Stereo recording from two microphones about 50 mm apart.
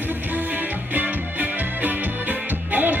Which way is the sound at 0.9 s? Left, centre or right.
Right.